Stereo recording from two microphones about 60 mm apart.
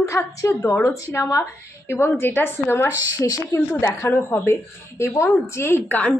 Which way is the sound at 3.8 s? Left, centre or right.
Left.